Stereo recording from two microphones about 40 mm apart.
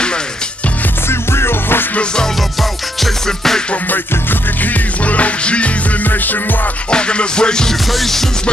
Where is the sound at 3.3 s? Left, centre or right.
Centre.